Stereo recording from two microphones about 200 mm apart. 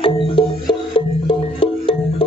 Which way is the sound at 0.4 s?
25° left (ahead or behind).